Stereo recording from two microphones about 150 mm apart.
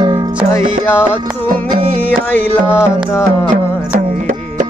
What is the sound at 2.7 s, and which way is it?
Music, 15° left (ahead or behind).